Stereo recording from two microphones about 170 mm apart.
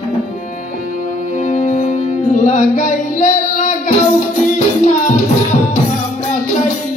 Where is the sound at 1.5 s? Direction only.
45° left (ahead or behind).